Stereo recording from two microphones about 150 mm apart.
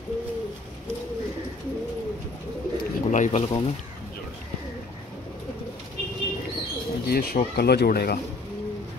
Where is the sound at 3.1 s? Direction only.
55° left (ahead or behind).